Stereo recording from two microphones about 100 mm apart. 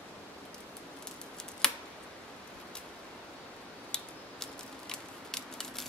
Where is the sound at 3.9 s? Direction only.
5° left (ahead or behind).